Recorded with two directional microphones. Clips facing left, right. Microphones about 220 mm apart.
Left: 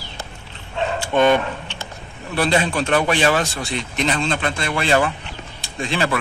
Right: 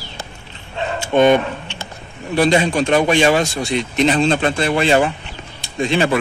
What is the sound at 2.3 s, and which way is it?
A man's voice, 20° right (ahead or behind).